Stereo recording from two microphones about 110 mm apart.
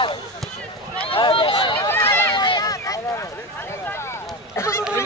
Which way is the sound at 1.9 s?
25° left (ahead or behind).